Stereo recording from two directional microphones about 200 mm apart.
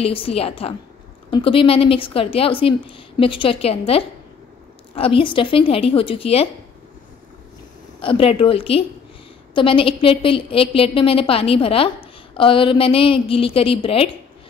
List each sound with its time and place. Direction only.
0.0 s a woman's voice: 30° left (ahead or behind)
8.0 s a woman's voice: 25° left (ahead or behind)